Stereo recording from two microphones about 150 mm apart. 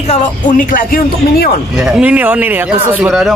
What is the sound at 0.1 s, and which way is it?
Speech, 60° left (ahead or behind).